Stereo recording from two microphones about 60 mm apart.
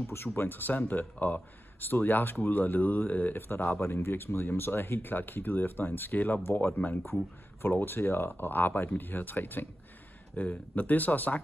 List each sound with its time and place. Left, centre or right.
0.0 s speech: left
10.3 s speech: left